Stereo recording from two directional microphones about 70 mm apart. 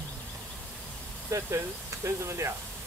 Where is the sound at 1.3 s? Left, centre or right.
Right.